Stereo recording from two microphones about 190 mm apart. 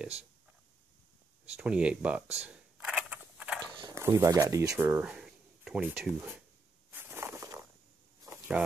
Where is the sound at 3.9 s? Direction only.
15° right (ahead or behind).